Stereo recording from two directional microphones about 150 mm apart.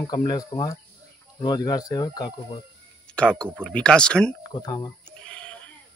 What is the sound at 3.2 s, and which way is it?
Speech, 5° left (ahead or behind).